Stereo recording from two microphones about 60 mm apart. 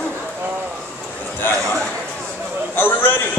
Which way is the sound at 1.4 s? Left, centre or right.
Left.